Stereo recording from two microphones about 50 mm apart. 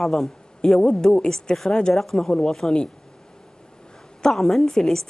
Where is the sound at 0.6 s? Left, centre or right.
Centre.